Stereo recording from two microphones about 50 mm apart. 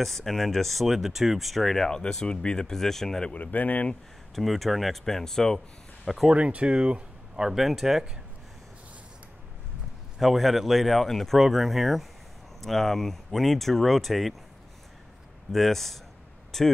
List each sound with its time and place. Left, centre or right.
0.0 s speech: centre
1.9 s speech: centre
3.3 s speech: left
4.4 s speech: centre
6.3 s speech: right; by 8.0 s centre
10.1 s speech: centre
11.3 s speech: centre
15.5 s speech: centre